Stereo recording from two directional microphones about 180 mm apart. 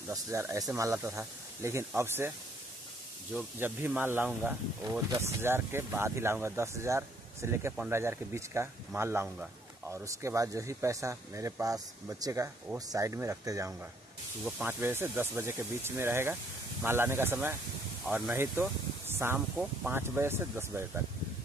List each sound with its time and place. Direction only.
0.1 s speech: 15° right (ahead or behind)
3.3 s speech: 10° right (ahead or behind)